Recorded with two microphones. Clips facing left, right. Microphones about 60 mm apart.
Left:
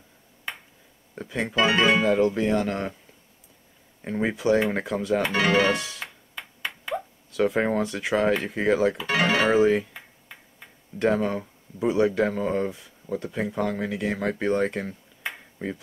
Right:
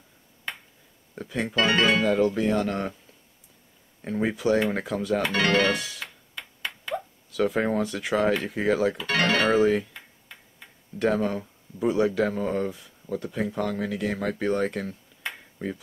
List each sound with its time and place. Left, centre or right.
1.1 s speech: left
4.0 s speech: centre
5.2 s speech: centre
5.9 s music: centre
7.3 s speech: centre
9.8 s finger snapping: centre
11.0 s speech: centre